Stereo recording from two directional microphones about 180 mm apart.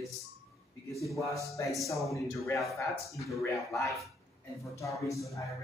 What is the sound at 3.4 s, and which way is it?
Speech, 15° left (ahead or behind).